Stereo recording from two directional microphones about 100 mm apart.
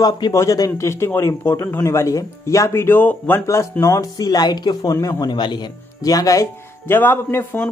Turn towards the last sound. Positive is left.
turn(degrees=25)  # may be behind; listen again after turning